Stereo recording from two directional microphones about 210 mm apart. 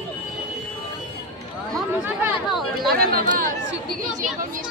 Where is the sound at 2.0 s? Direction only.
5° right (ahead or behind).